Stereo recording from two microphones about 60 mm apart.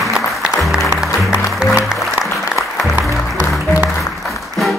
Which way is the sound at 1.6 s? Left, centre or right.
Centre.